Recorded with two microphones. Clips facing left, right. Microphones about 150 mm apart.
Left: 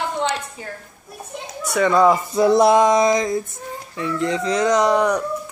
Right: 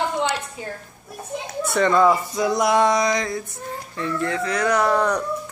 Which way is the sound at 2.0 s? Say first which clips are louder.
Left 3 dB; 25° left (ahead or behind).